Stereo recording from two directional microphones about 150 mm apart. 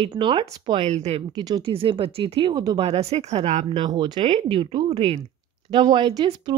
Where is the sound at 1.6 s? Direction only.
35° right (ahead or behind).